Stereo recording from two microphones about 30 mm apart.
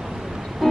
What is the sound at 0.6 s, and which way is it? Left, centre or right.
Music, centre.